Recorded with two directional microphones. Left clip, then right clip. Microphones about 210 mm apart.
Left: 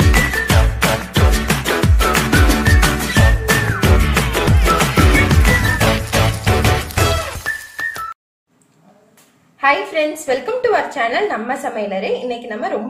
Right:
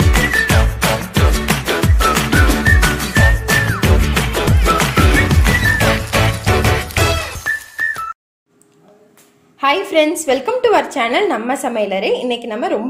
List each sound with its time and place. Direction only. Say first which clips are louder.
0.1 s music: right 2 dB; centre (ahead or behind)
9.6 s a woman's voice: right 2 dB; 35° right (ahead or behind)